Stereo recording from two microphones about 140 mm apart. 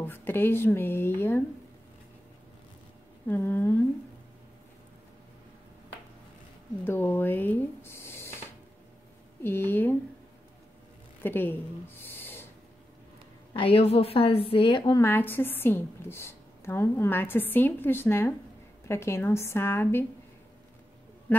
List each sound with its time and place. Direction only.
0.0 s speech: 15° left (ahead or behind)
3.3 s a woman's voice: 15° left (ahead or behind)
6.8 s speech: 15° left (ahead or behind)
9.4 s a woman's voice: 15° left (ahead or behind)
11.2 s a sound: 15° left (ahead or behind)
13.5 s a woman's voice: 40° left (ahead or behind)
15.0 s a woman's voice: 15° left (ahead or behind)